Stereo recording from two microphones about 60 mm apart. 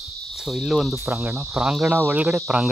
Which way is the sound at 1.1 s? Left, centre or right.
Right.